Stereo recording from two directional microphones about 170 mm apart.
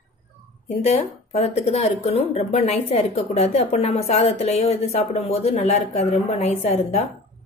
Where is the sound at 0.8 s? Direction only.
40° left (ahead or behind).